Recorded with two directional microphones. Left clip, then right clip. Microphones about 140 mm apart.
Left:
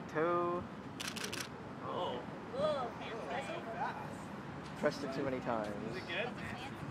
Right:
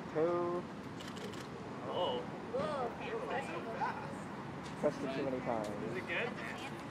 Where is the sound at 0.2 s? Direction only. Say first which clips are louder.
Right 1 dB; 40° left (ahead or behind).